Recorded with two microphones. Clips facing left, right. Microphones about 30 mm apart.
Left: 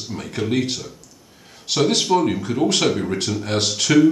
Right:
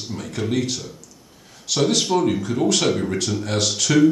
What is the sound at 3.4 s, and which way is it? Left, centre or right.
Speech, centre.